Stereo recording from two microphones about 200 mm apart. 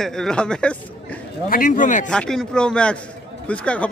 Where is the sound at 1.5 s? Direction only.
45° left (ahead or behind).